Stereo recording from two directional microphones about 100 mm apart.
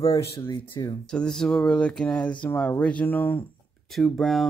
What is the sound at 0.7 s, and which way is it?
Speech, 40° left (ahead or behind).